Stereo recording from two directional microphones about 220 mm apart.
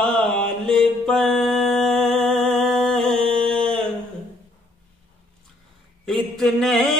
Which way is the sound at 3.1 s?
25° right (ahead or behind).